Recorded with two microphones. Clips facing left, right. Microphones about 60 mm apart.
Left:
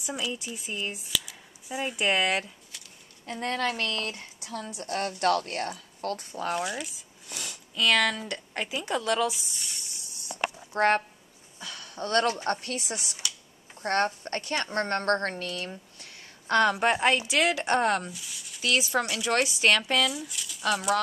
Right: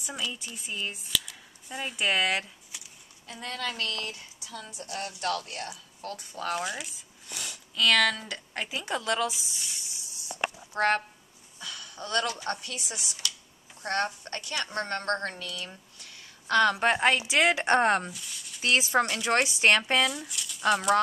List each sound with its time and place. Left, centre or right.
0.0 s speech: centre
3.3 s speech: left
4.6 s a woman's voice: left
4.9 s speech: left
6.5 s speech: centre
10.8 s a woman's voice: left
16.0 s a sound: left
16.7 s speech: centre
17.3 s speech: right
18.1 s a sound: centre
18.6 s speech: right
20.1 s a sound: centre